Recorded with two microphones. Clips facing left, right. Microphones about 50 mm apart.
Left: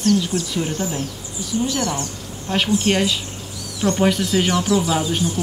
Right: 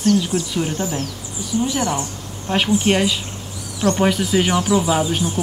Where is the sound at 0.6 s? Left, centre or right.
Centre.